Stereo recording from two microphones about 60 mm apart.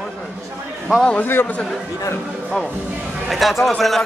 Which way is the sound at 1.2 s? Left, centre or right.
Left.